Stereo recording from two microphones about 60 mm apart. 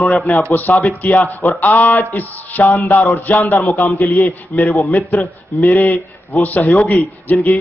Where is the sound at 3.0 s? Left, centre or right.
Left.